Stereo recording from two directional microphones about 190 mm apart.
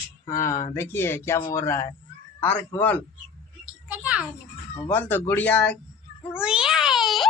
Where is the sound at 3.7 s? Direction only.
5° right (ahead or behind).